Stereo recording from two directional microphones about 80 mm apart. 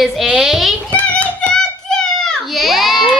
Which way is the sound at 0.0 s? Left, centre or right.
Centre.